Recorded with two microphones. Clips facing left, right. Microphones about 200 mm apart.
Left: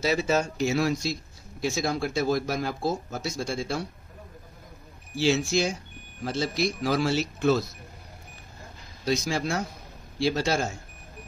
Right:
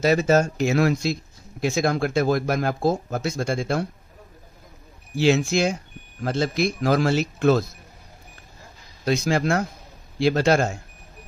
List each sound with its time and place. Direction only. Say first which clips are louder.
0.0 s speech: right 6 dB; 50° right (ahead or behind)
5.2 s speech: right 4 dB; 55° right (ahead or behind)
9.0 s speech: right 5 dB; 55° right (ahead or behind)